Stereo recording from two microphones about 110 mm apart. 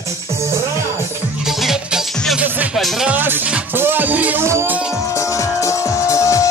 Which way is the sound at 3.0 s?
15° right (ahead or behind).